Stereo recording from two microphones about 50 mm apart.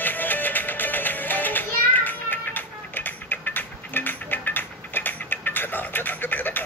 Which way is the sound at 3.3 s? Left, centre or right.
Left.